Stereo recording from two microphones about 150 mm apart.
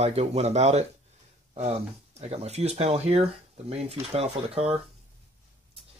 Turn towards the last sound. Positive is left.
turn(degrees=-40)  # may be behind; listen again after turning